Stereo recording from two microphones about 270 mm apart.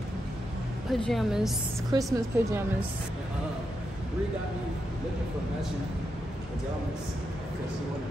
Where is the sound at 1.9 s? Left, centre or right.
Centre.